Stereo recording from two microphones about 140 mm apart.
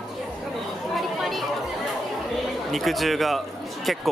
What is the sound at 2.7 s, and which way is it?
Speech, centre (ahead or behind).